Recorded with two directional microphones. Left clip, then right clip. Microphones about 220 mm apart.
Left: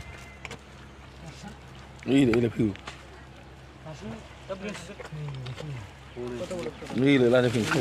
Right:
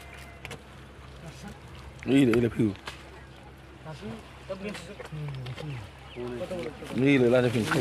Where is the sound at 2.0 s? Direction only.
5° right (ahead or behind).